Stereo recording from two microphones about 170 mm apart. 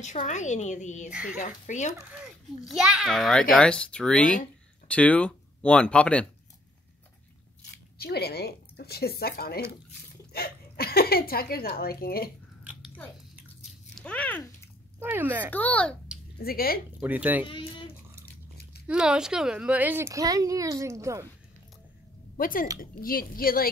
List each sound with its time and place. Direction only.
0.0 s a woman's voice: 45° left (ahead or behind)
2.6 s a child's voice: centre (ahead or behind)
8.0 s speech: 70° left (ahead or behind)
13.9 s speech: 5° left (ahead or behind)
15.0 s speech: 10° right (ahead or behind)
15.5 s a child's voice: 10° left (ahead or behind)
16.3 s speech: 60° left (ahead or behind)
17.0 s speech: 10° right (ahead or behind)
17.5 s a child's voice: 30° left (ahead or behind)
18.9 s speech: 5° right (ahead or behind)
22.4 s speech: 55° left (ahead or behind)